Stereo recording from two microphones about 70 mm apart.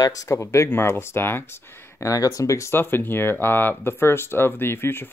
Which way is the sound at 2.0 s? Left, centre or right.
Left.